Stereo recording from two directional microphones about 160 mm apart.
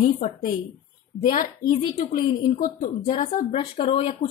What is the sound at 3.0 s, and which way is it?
Speech, 40° left (ahead or behind).